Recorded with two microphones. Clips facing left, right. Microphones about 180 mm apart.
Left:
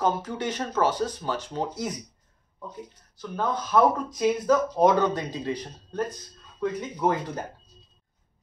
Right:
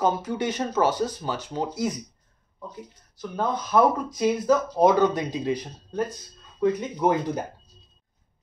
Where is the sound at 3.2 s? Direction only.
10° right (ahead or behind).